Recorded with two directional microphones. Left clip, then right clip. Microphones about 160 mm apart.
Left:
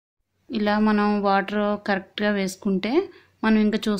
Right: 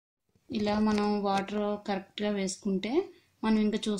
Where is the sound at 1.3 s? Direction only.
15° left (ahead or behind).